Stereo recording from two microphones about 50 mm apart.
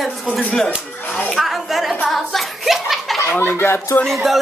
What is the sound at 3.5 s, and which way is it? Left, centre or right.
Speech, left.